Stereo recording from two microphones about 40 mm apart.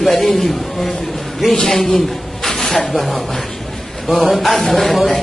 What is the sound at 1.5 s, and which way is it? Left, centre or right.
Speech, left.